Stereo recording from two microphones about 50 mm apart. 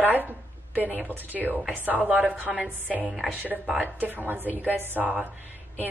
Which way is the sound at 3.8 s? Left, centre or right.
Right.